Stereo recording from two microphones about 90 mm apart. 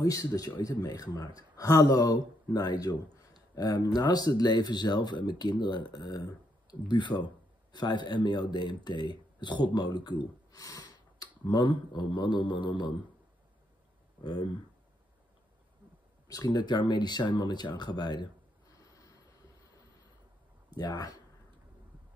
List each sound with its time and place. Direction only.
0.0 s a man's voice: 40° left (ahead or behind)
11.4 s speech: 60° left (ahead or behind)
16.3 s a man's voice: 45° left (ahead or behind)
18.9 s vehicle: 40° left (ahead or behind)
20.7 s a man's voice: 50° left (ahead or behind)